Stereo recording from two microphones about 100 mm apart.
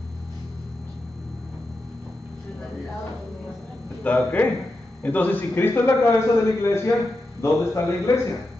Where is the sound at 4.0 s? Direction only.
15° left (ahead or behind).